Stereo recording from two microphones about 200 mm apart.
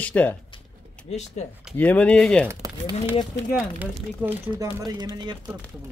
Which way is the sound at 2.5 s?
15° right (ahead or behind).